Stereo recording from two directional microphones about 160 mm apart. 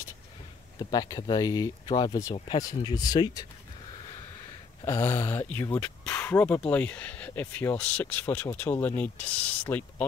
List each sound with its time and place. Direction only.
0.7 s speech: 25° left (ahead or behind)
4.8 s speech: 15° left (ahead or behind)